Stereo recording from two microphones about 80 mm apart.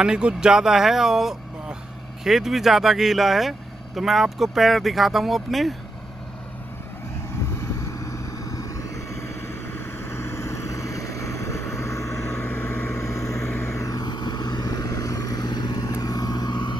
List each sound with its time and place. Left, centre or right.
0.0 s speech: centre
7.8 s vehicle: left
14.0 s vehicle: left